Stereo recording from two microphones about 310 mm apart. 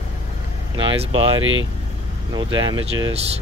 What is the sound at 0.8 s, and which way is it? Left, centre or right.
Speech, centre.